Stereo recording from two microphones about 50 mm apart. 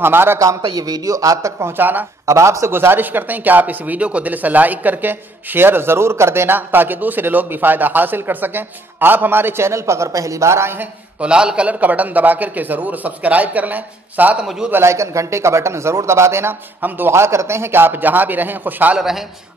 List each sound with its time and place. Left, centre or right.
0.0 s speech: right
1.7 s a man's voice: right
2.2 s speech: right
2.7 s speech: right
11.1 s a man's voice: centre
11.8 s a man's voice: right
14.4 s a man's voice: centre
14.8 s speech: right
16.8 s a man's voice: right
17.1 s a man's voice: right
18.9 s a man's voice: centre